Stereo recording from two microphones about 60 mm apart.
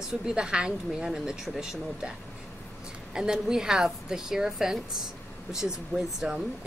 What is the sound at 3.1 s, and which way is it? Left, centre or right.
A woman's voice, centre.